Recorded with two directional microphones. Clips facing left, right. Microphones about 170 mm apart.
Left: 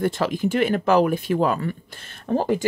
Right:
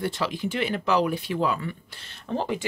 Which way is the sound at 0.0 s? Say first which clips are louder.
Left 6 dB; 50° left (ahead or behind).